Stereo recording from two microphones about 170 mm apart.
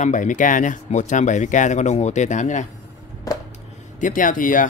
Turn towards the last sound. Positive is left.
turn(degrees=50)  # may be behind; listen again after turning